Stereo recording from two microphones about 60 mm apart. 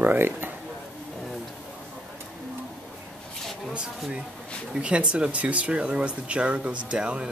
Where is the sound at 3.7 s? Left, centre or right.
Centre.